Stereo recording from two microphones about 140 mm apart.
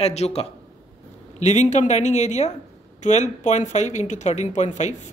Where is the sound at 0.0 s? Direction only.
50° left (ahead or behind).